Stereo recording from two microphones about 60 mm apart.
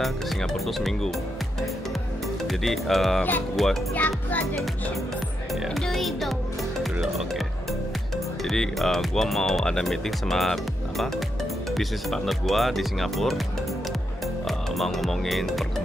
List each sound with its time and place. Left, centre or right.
0.0 s speech: centre
2.4 s speech: centre
3.9 s a child's voice: left
5.5 s speech: centre
8.5 s speech: centre
14.8 s speech: centre